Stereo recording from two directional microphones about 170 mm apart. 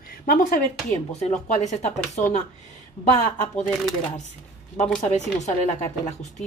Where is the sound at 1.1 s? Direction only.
40° left (ahead or behind).